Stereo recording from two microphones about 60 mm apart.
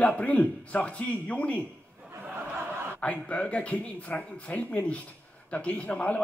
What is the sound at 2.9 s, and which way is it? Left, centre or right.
A man's voice, left.